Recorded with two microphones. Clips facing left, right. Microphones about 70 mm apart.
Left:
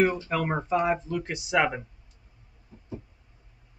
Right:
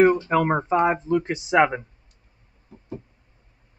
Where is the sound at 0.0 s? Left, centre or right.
Right.